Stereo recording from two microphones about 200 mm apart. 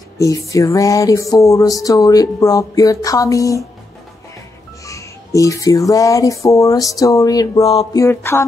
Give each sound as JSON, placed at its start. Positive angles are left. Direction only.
{"t": 0.2, "sound": "music", "side_deg": 15}
{"t": 4.8, "sound": "music", "side_deg": 15}